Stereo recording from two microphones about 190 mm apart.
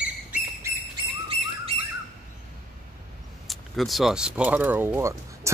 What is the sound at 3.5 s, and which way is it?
Speech, centre (ahead or behind).